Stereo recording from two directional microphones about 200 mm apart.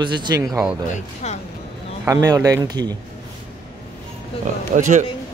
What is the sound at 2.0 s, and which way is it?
Speech, 15° right (ahead or behind).